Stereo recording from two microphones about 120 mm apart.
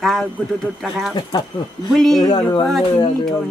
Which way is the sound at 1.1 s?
35° left (ahead or behind).